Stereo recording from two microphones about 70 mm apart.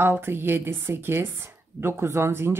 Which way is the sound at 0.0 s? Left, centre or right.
Right.